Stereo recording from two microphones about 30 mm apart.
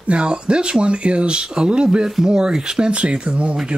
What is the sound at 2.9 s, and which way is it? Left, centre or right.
Speech, right.